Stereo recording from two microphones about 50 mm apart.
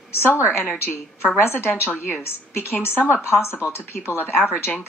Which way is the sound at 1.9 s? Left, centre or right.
Left.